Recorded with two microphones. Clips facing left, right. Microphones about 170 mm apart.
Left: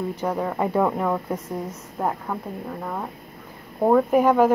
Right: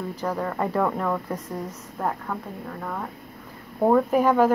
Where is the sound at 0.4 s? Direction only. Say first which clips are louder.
Left 2 dB; 10° left (ahead or behind).